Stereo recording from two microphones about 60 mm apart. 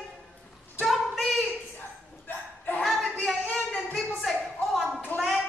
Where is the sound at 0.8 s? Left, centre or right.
Centre.